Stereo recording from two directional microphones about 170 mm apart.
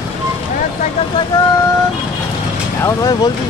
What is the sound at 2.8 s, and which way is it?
Speech, 20° left (ahead or behind).